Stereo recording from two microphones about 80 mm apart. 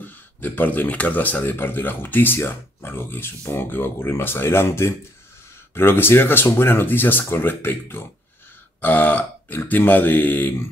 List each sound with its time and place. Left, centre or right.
0.0 s speech: left